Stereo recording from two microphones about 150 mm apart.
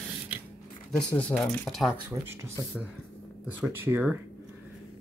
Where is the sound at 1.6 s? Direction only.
Centre (ahead or behind).